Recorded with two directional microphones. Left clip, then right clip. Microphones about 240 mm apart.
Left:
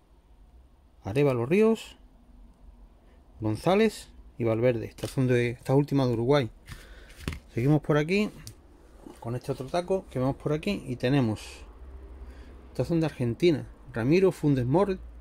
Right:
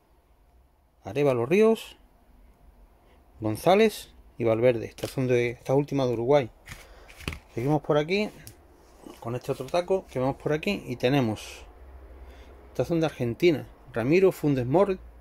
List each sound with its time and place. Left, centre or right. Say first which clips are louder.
1.0 s speech: right 1 dB; centre
3.4 s speech: right 3 dB; centre
7.5 s speech: right 1 dB; centre
9.2 s speech: right 3 dB; centre